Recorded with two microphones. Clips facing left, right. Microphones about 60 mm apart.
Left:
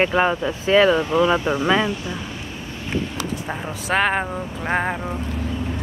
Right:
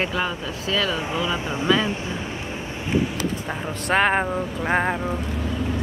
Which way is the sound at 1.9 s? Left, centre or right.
Right.